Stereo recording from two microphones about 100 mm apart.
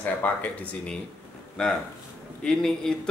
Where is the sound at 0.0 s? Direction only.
15° left (ahead or behind).